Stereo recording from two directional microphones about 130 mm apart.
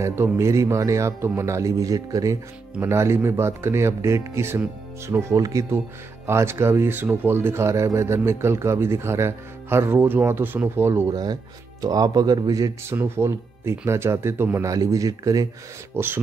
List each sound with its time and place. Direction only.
0.0 s speech: 20° right (ahead or behind)
11.1 s speech: 30° right (ahead or behind)
12.9 s speech: 20° right (ahead or behind)